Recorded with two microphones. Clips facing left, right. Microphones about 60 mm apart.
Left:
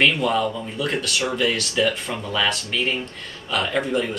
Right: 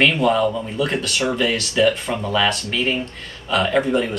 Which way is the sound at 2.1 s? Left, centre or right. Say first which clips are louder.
Right 5 dB; centre.